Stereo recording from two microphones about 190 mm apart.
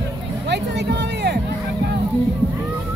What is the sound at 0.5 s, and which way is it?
Music, 60° right (ahead or behind).